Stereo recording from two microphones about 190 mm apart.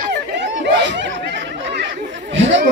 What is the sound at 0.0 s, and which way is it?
Chatter, 65° right (ahead or behind).